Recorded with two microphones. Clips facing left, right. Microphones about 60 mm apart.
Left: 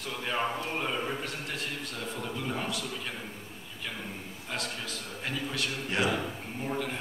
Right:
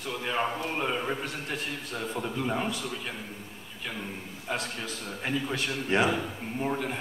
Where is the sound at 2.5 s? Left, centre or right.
Right.